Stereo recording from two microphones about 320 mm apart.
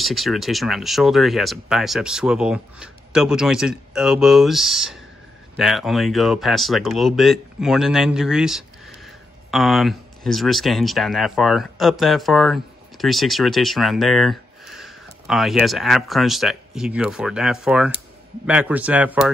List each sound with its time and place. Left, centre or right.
0.0 s speech: centre